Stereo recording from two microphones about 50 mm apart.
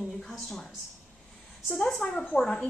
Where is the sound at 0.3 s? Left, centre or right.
Centre.